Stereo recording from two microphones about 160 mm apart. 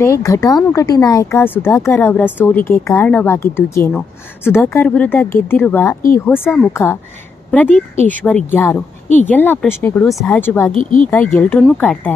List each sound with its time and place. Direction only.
0.0 s speech: 20° left (ahead or behind)
10.7 s speech: 50° left (ahead or behind)
11.3 s a woman's voice: 10° left (ahead or behind)